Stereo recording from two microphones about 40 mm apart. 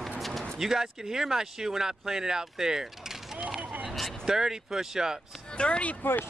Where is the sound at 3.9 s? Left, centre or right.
Centre.